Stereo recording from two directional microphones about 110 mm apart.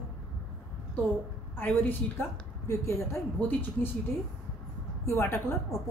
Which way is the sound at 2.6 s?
25° left (ahead or behind).